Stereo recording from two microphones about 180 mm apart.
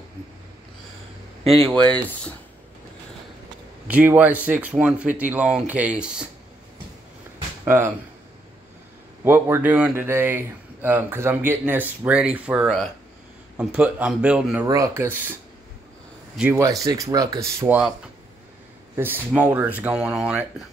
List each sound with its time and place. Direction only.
1.4 s speech: 35° right (ahead or behind)
3.8 s speech: 10° right (ahead or behind)
7.6 s speech: 15° right (ahead or behind)
9.2 s speech: 10° right (ahead or behind)
16.3 s speech: 10° right (ahead or behind)
18.9 s speech: 10° right (ahead or behind)